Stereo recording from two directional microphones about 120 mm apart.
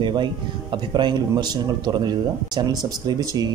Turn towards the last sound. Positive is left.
turn(degrees=-30)  # may be behind; listen again after turning